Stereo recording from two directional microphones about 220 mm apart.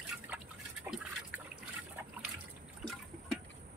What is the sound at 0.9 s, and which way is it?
Liquid, 5° right (ahead or behind).